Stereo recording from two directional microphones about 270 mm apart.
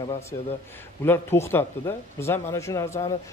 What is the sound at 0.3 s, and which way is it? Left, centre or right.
A man's voice, centre.